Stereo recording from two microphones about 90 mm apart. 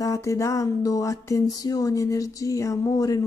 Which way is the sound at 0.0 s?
40° left (ahead or behind).